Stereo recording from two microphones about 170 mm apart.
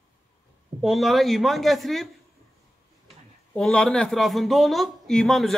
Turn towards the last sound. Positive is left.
turn(degrees=0)  # may be behind; listen again after turning